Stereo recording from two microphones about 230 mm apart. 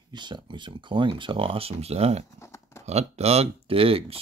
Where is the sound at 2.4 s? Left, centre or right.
Centre.